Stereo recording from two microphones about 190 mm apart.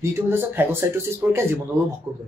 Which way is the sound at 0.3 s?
10° right (ahead or behind).